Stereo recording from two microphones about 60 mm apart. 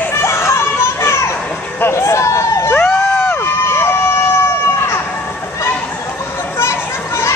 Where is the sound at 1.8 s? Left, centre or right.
Left.